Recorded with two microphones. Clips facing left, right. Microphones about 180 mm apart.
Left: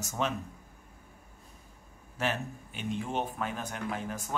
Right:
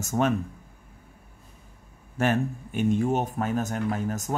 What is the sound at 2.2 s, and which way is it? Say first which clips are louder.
Speech: right 8 dB; 50° right (ahead or behind).